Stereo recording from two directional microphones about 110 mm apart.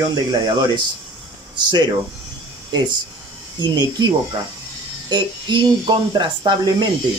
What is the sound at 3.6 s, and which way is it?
Speech, 40° right (ahead or behind).